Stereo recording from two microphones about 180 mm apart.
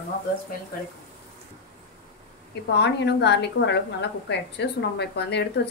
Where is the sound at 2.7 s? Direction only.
70° left (ahead or behind).